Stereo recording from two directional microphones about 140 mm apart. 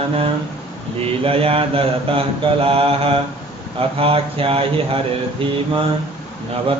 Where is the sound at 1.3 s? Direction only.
40° right (ahead or behind).